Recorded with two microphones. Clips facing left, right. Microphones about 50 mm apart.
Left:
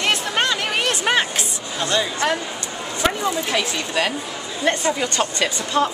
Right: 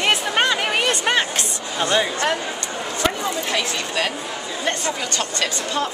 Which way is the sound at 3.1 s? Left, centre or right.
Centre.